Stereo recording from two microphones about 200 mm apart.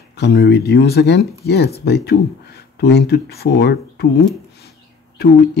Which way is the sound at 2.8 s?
55° left (ahead or behind).